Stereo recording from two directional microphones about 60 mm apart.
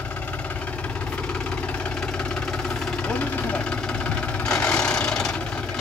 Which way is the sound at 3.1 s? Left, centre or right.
Left.